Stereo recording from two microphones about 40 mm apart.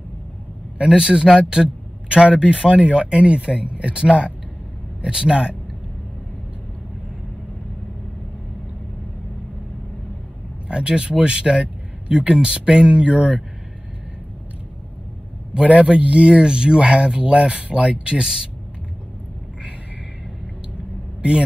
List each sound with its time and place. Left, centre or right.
0.8 s a man's voice: right
10.7 s a man's voice: right
15.5 s a man's voice: right